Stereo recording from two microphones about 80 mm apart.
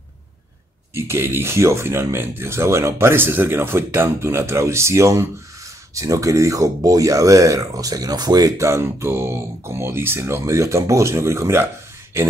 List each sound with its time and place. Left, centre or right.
0.9 s speech: right